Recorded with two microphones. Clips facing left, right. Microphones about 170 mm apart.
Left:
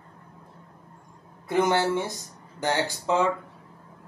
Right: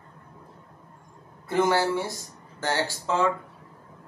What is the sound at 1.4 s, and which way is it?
A man's voice, 20° left (ahead or behind).